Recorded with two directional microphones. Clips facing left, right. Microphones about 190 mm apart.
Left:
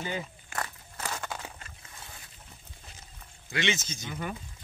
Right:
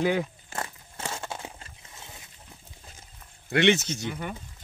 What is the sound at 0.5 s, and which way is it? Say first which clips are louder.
Biting: right 1 dB; 25° right (ahead or behind).